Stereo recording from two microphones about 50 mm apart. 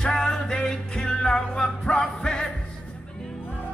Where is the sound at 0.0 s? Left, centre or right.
Centre.